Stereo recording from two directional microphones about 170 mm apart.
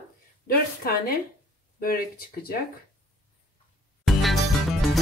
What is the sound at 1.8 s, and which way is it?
Speech, 60° left (ahead or behind).